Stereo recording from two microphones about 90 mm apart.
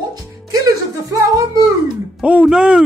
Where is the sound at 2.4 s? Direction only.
10° right (ahead or behind).